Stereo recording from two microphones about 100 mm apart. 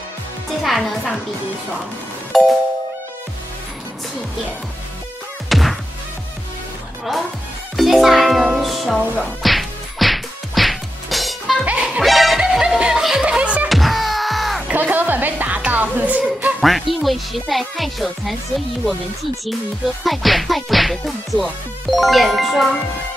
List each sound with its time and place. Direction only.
0.7 s music: centre (ahead or behind)
2.3 s insect: centre (ahead or behind)
5.5 s music: centre (ahead or behind)
7.7 s music: centre (ahead or behind)
9.1 s whack: 5° left (ahead or behind)
11.6 s music: 15° right (ahead or behind)
12.0 s music: centre (ahead or behind)
13.7 s music: centre (ahead or behind)
14.7 s music: 15° right (ahead or behind)
16.6 s insect: centre (ahead or behind)
20.0 s insect: centre (ahead or behind)